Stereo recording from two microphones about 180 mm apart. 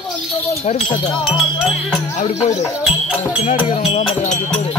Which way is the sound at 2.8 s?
5° right (ahead or behind).